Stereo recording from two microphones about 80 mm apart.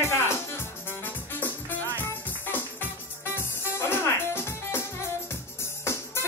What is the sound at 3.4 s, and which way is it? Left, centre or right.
Music, left.